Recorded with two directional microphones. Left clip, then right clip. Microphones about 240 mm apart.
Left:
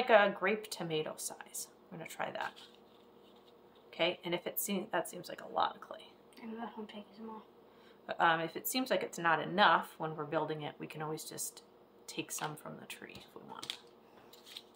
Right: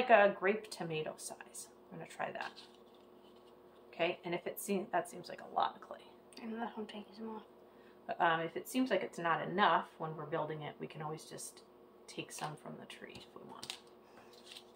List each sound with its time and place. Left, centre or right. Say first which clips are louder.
0.1 s speech: even; left
3.9 s speech: left 2 dB; left
6.3 s speech: right 2 dB; right
8.1 s speech: left 2 dB; left
13.1 s speech: left 2 dB; centre